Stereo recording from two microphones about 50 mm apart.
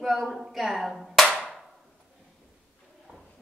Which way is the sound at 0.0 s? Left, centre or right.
Centre.